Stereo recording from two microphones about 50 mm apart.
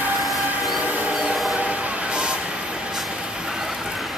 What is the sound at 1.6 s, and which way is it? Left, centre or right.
Vehicle, right.